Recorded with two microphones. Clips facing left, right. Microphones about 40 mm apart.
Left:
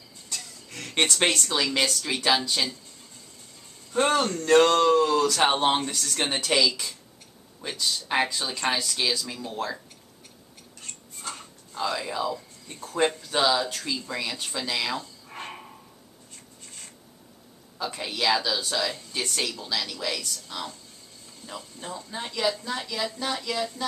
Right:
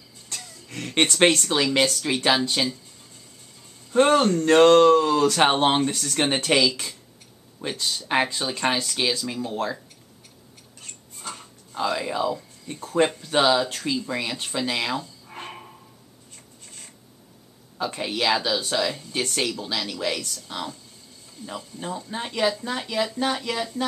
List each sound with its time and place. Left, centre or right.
0.4 s a sound: centre
1.5 s speech: right
3.9 s speech: centre
5.3 s speech: right
5.9 s speech: centre
6.7 s speech: centre
10.8 s a sound: centre
11.7 s speech: centre
15.2 s a sound: centre
17.9 s speech: right
20.2 s speech: centre
21.5 s speech: centre